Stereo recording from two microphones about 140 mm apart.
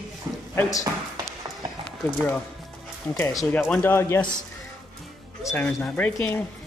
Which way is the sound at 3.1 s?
15° left (ahead or behind).